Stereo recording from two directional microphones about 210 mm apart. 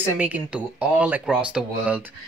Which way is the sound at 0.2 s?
5° right (ahead or behind).